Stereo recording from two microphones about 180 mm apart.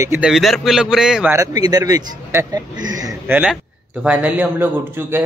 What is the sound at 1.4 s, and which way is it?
Speech, 20° right (ahead or behind).